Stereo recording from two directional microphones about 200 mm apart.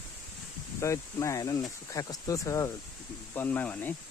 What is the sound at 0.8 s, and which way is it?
Speech, 15° left (ahead or behind).